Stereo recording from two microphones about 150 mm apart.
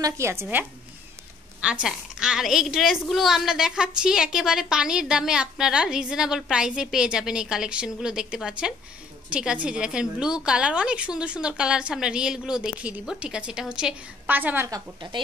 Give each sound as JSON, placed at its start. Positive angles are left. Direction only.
{"t": 0.0, "sound": "a woman's voice", "side_deg": -15}
{"t": 14.7, "sound": "a woman's voice", "side_deg": -30}